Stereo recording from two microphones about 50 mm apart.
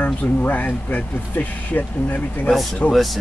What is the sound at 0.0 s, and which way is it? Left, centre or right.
Speech, left.